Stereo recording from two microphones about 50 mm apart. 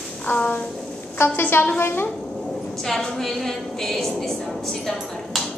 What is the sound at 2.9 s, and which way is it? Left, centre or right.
A woman's voice, centre.